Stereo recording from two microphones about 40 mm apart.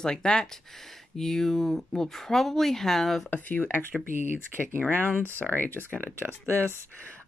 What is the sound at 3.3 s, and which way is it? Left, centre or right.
Speech, left.